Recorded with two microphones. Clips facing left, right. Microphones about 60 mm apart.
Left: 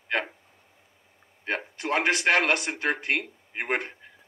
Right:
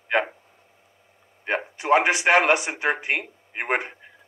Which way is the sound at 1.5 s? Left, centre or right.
Centre.